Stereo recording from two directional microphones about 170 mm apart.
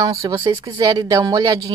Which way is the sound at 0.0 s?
20° right (ahead or behind).